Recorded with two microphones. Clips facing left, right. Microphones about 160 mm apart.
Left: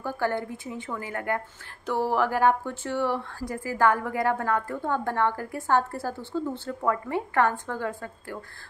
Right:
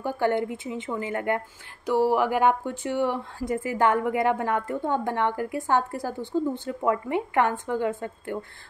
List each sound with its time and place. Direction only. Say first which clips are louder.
0.0 s a woman's voice: right 4 dB; 20° right (ahead or behind)